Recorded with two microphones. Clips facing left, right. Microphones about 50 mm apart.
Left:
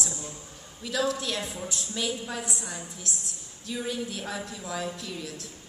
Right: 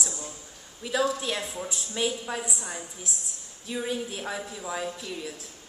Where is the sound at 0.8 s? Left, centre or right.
Centre.